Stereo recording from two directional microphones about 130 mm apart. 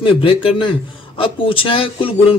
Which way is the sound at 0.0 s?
45° left (ahead or behind).